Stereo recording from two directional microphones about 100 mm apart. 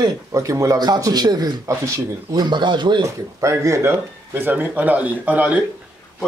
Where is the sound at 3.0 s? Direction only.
30° right (ahead or behind).